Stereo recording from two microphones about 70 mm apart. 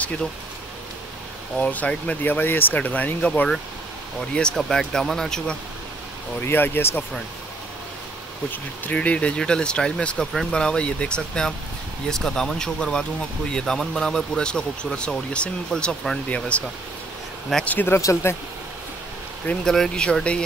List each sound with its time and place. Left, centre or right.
1.6 s speech: left
6.4 s speech: left
8.5 s speech: left; by 16.2 s centre
16.3 s speech: centre
17.6 s speech: left
17.9 s speech: left
19.6 s speech: centre